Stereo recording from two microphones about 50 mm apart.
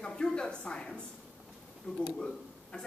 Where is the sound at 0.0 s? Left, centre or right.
Centre.